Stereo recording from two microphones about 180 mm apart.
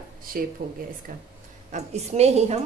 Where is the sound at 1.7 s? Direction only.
40° right (ahead or behind).